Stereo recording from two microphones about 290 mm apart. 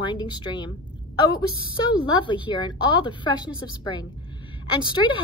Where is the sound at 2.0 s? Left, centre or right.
Centre.